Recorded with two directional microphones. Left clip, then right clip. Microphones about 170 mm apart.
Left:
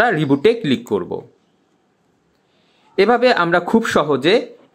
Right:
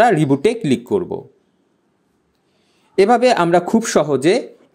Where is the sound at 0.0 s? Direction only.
30° right (ahead or behind).